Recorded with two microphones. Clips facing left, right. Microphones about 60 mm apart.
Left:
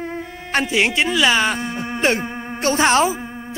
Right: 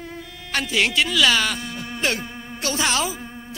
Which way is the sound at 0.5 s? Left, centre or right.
Left.